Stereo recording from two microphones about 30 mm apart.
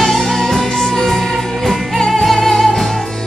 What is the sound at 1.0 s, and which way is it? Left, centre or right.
Music, centre.